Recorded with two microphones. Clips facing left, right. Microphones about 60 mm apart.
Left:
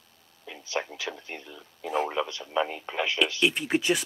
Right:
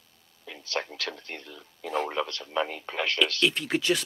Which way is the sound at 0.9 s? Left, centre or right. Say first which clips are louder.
Even; centre.